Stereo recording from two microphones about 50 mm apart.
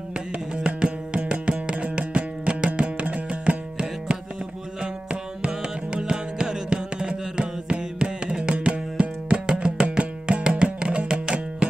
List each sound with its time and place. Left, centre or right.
0.1 s music: centre